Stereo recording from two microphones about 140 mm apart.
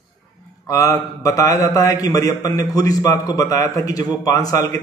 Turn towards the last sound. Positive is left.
turn(degrees=25)  # may be behind; listen again after turning